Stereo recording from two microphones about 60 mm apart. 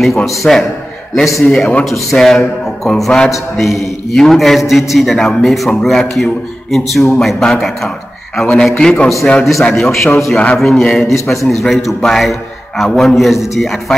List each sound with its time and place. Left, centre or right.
0.0 s a man's voice: centre
3.5 s a man's voice: centre
9.4 s a man's voice: centre